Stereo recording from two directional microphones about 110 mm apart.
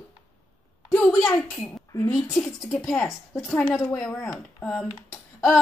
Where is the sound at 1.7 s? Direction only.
30° left (ahead or behind).